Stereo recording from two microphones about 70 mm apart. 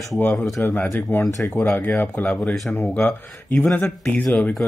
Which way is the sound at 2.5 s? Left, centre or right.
Centre.